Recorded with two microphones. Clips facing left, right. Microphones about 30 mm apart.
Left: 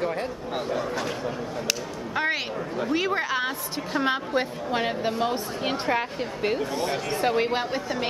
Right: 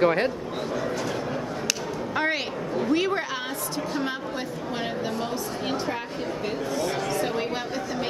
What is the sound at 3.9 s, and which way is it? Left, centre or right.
A woman's voice, left.